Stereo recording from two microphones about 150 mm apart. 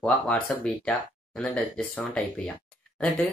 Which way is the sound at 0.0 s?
10° left (ahead or behind).